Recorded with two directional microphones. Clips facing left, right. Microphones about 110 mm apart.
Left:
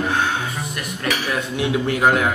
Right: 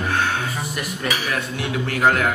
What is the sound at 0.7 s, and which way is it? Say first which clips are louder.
Speech: left 2 dB; centre (ahead or behind).